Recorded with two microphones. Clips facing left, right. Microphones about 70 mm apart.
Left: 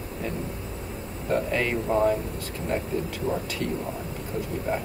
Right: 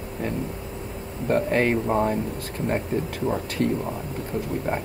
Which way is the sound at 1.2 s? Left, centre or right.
Right.